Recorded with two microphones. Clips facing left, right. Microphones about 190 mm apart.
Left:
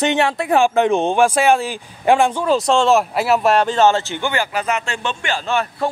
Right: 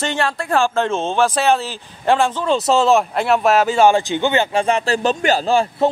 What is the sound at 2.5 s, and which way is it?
Speech, centre (ahead or behind).